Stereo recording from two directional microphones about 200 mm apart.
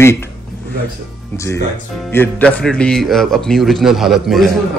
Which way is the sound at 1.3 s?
15° left (ahead or behind).